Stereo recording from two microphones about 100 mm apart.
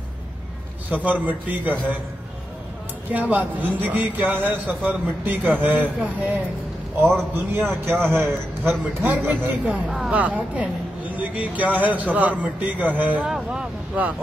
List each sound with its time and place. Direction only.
0.8 s a man's voice: 15° right (ahead or behind)
3.1 s a man's voice: 15° right (ahead or behind)
7.5 s a man's voice: 20° right (ahead or behind)